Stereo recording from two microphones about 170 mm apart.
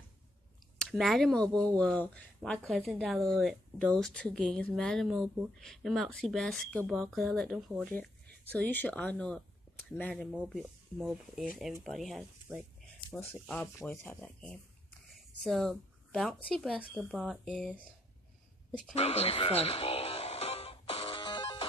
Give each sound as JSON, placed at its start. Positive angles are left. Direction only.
{"t": 0.7, "sound": "speech", "side_deg": 0}
{"t": 8.5, "sound": "speech", "side_deg": 10}
{"t": 10.3, "sound": "speech", "side_deg": -5}
{"t": 13.1, "sound": "speech", "side_deg": 10}
{"t": 18.9, "sound": "music", "side_deg": 35}